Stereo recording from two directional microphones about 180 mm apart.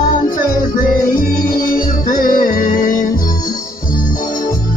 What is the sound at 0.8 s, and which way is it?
Music, 50° left (ahead or behind).